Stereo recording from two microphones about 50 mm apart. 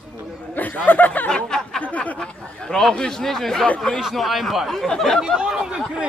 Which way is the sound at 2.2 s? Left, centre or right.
Centre.